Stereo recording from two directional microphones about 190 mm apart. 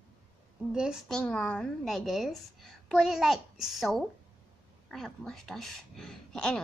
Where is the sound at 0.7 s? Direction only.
5° right (ahead or behind).